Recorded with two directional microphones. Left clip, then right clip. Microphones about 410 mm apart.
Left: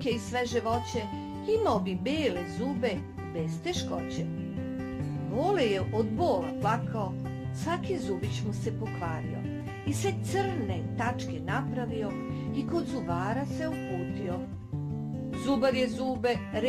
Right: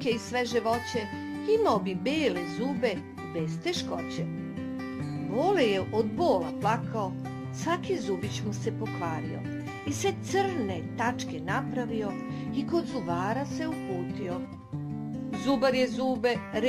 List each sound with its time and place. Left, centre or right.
0.0 s speech: centre
5.3 s speech: centre
9.8 s speech: centre
13.1 s speech: centre
15.4 s speech: centre